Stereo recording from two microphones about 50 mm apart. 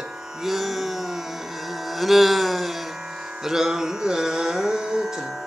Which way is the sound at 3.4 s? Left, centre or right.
Centre.